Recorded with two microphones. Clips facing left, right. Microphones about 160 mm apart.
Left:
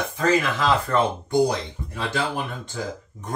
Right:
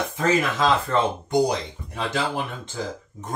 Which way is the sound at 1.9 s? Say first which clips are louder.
Even; 20° right (ahead or behind).